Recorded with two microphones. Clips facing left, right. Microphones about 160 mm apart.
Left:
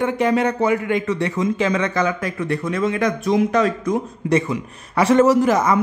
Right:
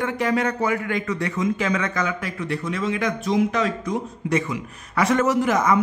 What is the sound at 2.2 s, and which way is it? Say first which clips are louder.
A man's voice: left 4 dB; 45° left (ahead or behind).